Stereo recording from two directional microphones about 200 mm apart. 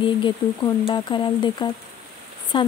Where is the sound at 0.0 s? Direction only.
20° left (ahead or behind).